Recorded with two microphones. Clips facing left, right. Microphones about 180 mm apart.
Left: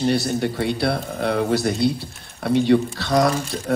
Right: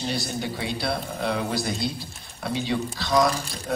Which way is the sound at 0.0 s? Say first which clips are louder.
Left 8 dB; 65° left (ahead or behind).